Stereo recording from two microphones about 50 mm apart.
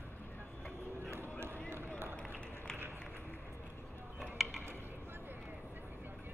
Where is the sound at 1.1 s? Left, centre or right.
Right.